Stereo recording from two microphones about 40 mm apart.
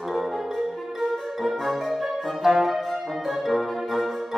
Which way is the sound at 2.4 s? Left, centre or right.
Centre.